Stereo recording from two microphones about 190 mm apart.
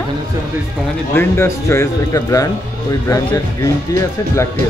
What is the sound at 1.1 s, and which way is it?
A woman's voice, 10° left (ahead or behind).